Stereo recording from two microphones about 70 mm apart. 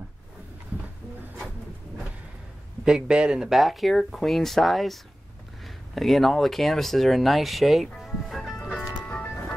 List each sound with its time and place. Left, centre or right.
2.8 s speech: centre
5.9 s speech: centre
8.0 s music: centre
9.0 s music: left